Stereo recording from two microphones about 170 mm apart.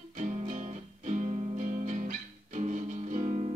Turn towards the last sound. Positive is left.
turn(degrees=-35)  # may be behind; listen again after turning